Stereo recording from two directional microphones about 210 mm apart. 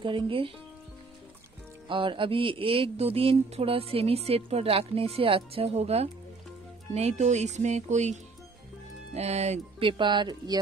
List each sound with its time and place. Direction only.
0.0 s speech: 25° right (ahead or behind)
1.9 s speech: 25° right (ahead or behind)